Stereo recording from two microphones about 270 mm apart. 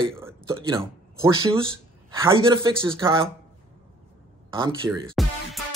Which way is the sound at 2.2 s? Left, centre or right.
Centre.